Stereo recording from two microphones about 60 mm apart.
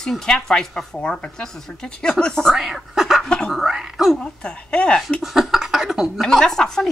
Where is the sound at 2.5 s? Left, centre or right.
Centre.